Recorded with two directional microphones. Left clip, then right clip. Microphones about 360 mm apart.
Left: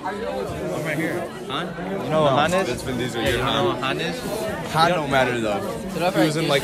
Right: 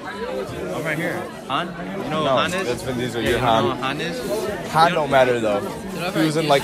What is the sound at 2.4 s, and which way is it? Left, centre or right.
Speech, left.